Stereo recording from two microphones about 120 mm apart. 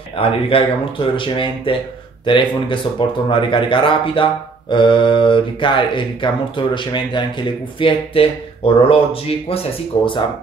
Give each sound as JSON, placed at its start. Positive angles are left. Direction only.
{"t": 0.1, "sound": "speech", "side_deg": 50}